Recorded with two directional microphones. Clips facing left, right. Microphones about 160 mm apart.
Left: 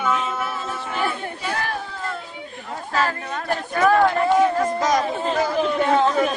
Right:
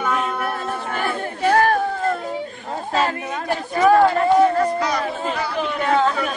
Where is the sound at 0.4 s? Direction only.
55° right (ahead or behind).